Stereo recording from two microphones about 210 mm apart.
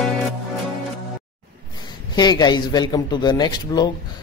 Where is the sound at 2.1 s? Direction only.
20° left (ahead or behind).